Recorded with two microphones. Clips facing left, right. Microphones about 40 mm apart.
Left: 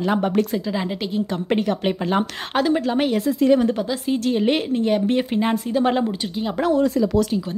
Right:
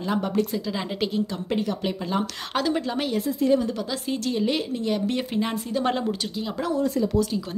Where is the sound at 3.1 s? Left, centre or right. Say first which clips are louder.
Left 3 dB; left.